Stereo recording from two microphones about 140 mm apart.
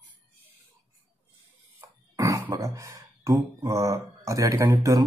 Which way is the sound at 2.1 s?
25° right (ahead or behind).